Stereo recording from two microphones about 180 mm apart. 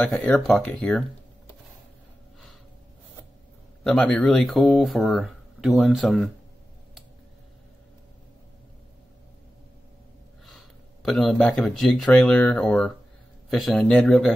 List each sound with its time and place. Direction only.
0.0 s speech: 5° left (ahead or behind)
3.8 s speech: 5° left (ahead or behind)
11.1 s speech: centre (ahead or behind)